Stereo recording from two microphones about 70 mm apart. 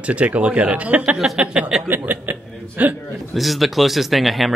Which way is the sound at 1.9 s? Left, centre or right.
Right.